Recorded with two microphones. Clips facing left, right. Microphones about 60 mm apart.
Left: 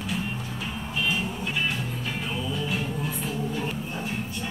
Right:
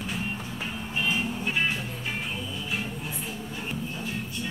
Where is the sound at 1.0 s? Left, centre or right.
Right.